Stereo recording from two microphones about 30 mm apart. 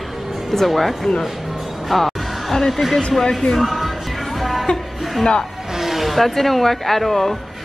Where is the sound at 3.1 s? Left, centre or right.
Centre.